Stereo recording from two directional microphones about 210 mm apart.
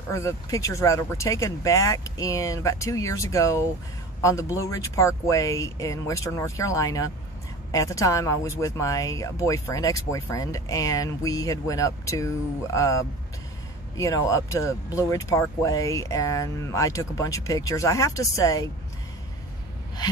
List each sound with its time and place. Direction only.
0.1 s a man's voice: 15° left (ahead or behind)